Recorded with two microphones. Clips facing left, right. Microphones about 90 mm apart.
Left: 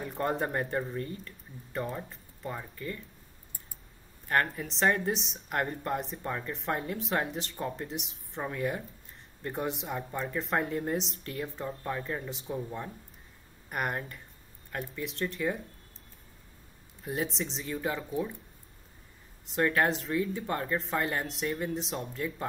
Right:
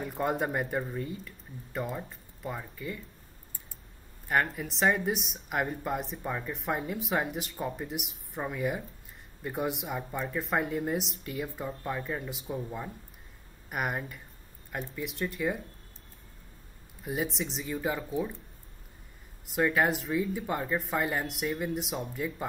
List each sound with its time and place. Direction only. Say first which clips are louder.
0.0 s speech: right 1 dB; 5° right (ahead or behind)
4.3 s speech: even; 5° right (ahead or behind)
17.0 s speech: right 1 dB; 5° right (ahead or behind)
19.4 s speech: even; 5° right (ahead or behind)